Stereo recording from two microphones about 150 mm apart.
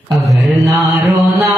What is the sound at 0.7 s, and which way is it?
Mantra, 10° right (ahead or behind).